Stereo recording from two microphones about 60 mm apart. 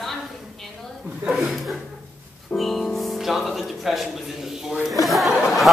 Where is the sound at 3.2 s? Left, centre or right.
Centre.